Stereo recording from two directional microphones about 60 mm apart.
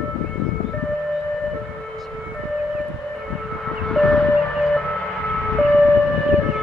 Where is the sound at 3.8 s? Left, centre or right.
Centre.